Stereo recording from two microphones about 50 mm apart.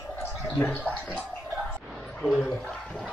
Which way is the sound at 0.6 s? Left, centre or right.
Left.